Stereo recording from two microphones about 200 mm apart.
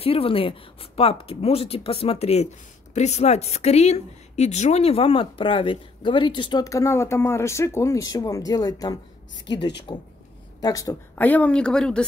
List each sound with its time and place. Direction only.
0.0 s speech: 30° left (ahead or behind); by 12.1 s 5° left (ahead or behind)